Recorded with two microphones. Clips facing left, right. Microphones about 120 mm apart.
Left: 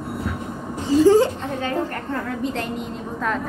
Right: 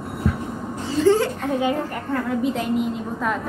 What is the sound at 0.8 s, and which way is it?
Speech, 15° left (ahead or behind).